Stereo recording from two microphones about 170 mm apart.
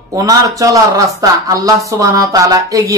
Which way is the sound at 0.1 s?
20° right (ahead or behind).